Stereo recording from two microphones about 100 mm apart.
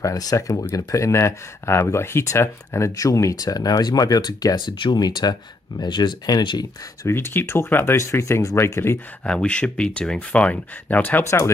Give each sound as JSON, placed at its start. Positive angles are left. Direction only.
{"t": 0.0, "sound": "speech", "side_deg": 35}
{"t": 7.0, "sound": "speech", "side_deg": 25}
{"t": 9.2, "sound": "speech", "side_deg": 10}